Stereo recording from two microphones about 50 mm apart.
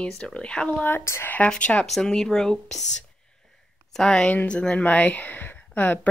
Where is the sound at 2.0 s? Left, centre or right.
Centre; by 6.1 s left.